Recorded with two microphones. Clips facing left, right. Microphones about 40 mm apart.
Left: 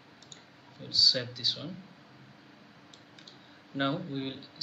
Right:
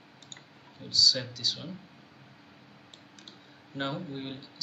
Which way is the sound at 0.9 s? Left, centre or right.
Centre.